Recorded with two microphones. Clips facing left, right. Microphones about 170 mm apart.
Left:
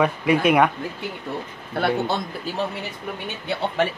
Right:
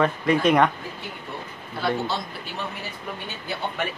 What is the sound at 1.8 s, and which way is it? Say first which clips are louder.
Speech: left 4 dB; 60° left (ahead or behind).